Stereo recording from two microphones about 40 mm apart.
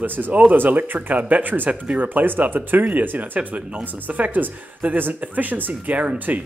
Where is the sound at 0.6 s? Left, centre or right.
Right.